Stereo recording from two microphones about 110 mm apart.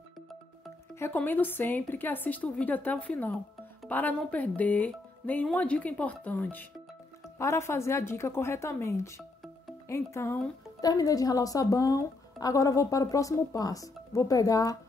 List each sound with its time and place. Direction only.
0.9 s a woman's voice: 20° left (ahead or behind)
7.3 s a woman's voice: 25° left (ahead or behind)